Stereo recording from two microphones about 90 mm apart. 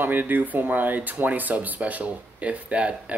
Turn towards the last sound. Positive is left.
turn(degrees=-15)  # may be behind; listen again after turning